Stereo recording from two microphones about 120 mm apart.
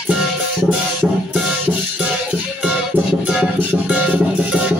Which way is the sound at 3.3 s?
5° right (ahead or behind).